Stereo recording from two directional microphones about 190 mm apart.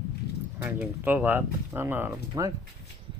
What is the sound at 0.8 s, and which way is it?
Speech, 10° right (ahead or behind).